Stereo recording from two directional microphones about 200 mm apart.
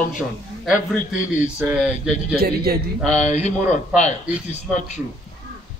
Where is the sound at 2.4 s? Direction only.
50° right (ahead or behind).